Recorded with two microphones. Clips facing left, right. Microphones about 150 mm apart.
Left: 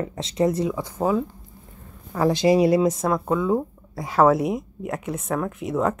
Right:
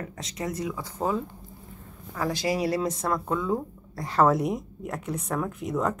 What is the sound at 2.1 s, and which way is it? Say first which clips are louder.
Speech: left 9 dB; 25° left (ahead or behind).